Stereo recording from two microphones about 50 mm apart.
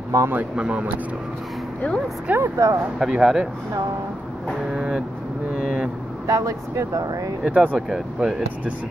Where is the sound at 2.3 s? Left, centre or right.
Right.